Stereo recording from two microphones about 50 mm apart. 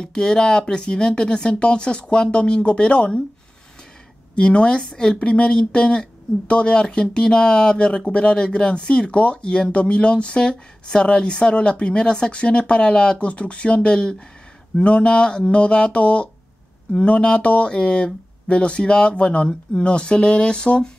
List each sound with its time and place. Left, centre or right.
0.0 s speech: centre
4.4 s speech: left